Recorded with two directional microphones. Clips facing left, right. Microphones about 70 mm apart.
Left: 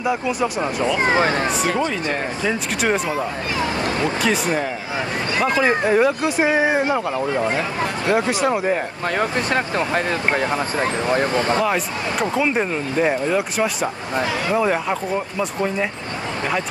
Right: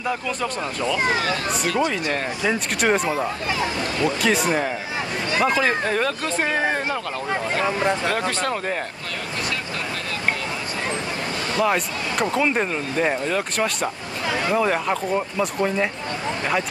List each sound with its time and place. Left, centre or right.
0.0 s speech: centre
0.9 s speech: left
2.4 s speech: centre
5.4 s speech: centre
5.7 s speech: centre
9.2 s speech: left
11.6 s speech: centre